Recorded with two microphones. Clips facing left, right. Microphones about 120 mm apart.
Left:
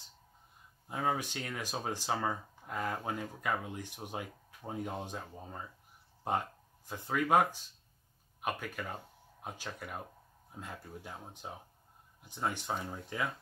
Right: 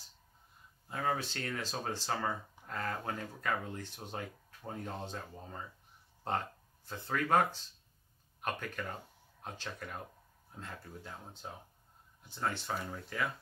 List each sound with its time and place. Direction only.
0.8 s speech: 15° left (ahead or behind)